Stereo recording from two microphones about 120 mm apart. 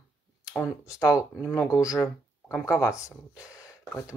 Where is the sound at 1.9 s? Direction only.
25° left (ahead or behind).